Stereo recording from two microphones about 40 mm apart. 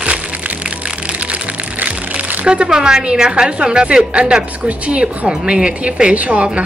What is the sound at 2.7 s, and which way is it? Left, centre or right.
Speech, centre.